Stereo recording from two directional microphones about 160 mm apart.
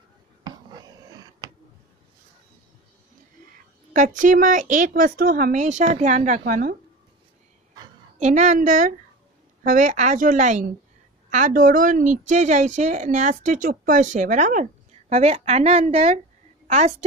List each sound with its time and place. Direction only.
0.4 s finger snapping: 25° right (ahead or behind)
3.9 s a woman's voice: 55° right (ahead or behind)
8.2 s a woman's voice: 50° right (ahead or behind)